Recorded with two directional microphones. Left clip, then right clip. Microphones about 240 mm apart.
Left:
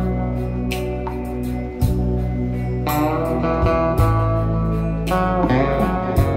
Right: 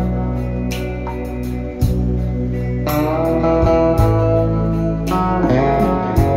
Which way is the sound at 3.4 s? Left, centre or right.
Centre.